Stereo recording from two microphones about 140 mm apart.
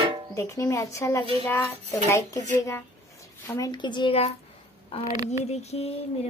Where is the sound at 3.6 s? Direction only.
30° left (ahead or behind).